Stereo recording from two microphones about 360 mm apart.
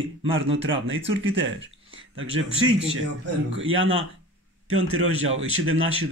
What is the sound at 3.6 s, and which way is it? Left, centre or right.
A man's voice, right.